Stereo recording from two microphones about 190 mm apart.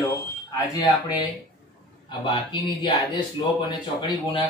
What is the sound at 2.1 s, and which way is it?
Speech, 25° left (ahead or behind).